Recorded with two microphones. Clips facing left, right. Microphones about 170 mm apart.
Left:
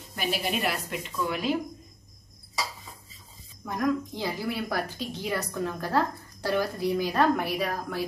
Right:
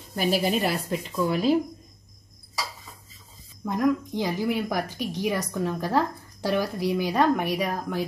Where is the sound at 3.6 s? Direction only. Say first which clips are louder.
Right 4 dB; 20° right (ahead or behind).